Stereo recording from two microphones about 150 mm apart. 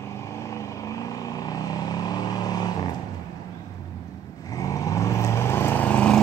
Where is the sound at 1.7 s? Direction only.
25° left (ahead or behind).